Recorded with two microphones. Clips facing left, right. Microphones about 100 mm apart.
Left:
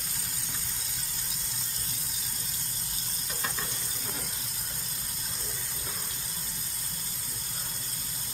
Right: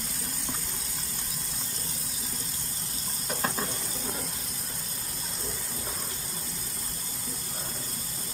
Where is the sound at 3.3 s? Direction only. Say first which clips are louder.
Right 6 dB; 40° right (ahead or behind).